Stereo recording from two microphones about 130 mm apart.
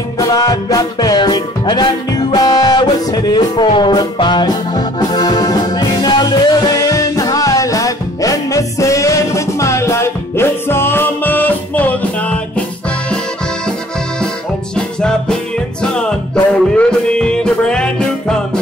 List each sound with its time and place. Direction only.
0.2 s music: 30° left (ahead or behind); by 12.4 s 10° left (ahead or behind)
14.8 s music: 5° left (ahead or behind)